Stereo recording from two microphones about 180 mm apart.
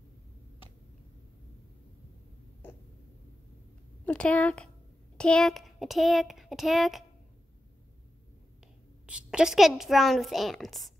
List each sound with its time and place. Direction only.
4.0 s a woman's voice: 5° left (ahead or behind)
9.0 s a woman's voice: 5° right (ahead or behind)